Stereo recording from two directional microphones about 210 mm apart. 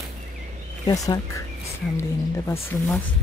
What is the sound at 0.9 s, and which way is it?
Speech, 15° left (ahead or behind).